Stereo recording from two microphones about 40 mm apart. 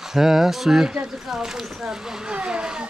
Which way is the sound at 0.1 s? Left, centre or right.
Centre.